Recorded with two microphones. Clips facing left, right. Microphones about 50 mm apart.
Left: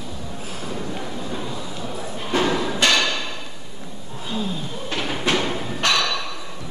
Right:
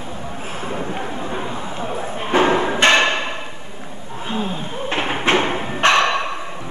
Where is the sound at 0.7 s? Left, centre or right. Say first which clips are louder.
Right 4 dB; right.